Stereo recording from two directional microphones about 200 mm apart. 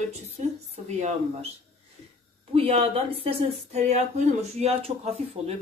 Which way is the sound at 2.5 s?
30° right (ahead or behind).